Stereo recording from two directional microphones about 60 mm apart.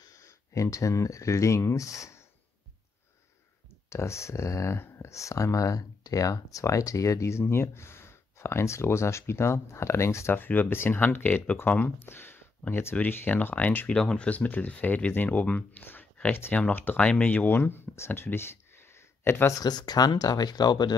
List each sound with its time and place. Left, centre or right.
0.0 s a sound: left
0.5 s speech: left
3.9 s speech: left
10.3 s speech: left
13.9 s speech: centre
17.5 s speech: left
19.6 s speech: left